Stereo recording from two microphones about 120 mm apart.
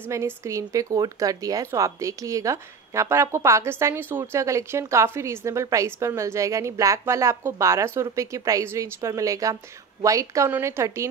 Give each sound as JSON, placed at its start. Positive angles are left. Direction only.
{"t": 0.1, "sound": "a woman's voice", "side_deg": -25}